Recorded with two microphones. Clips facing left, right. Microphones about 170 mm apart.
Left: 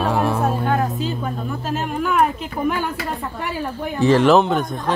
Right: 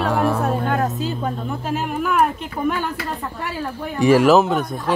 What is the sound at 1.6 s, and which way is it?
Speech, 10° right (ahead or behind).